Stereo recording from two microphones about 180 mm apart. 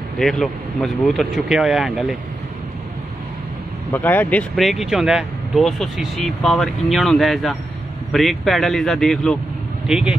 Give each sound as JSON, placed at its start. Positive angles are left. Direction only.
{"t": 0.2, "sound": "speech", "side_deg": 0}
{"t": 3.9, "sound": "speech", "side_deg": 10}